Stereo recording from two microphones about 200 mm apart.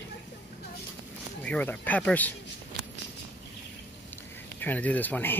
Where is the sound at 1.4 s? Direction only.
5° left (ahead or behind).